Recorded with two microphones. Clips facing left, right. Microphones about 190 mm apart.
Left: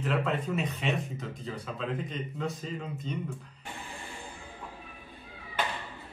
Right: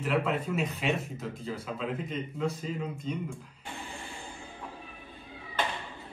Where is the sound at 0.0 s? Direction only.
5° right (ahead or behind).